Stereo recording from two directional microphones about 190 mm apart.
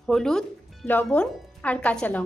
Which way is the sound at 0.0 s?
Centre (ahead or behind).